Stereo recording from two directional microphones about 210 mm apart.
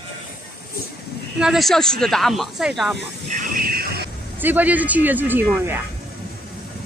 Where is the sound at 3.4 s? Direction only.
45° right (ahead or behind).